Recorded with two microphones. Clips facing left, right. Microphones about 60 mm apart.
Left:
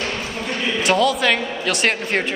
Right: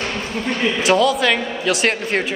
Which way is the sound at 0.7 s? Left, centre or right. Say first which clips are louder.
Right 1 dB; centre.